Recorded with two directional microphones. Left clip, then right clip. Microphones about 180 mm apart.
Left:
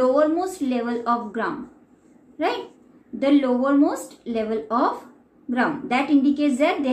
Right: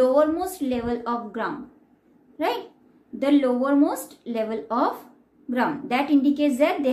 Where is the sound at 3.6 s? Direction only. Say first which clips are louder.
Left 2 dB; centre (ahead or behind).